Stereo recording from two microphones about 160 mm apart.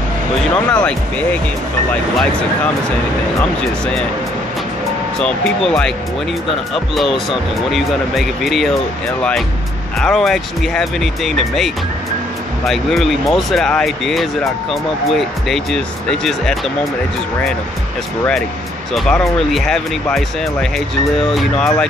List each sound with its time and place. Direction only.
0.7 s speech: 5° left (ahead or behind)
5.2 s speech: 5° left (ahead or behind)
9.9 s speech: centre (ahead or behind)
18.9 s speech: 5° left (ahead or behind)
21.4 s speech: 5° left (ahead or behind)